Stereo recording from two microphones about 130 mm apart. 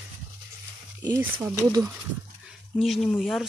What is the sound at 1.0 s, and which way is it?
Speech, 20° right (ahead or behind).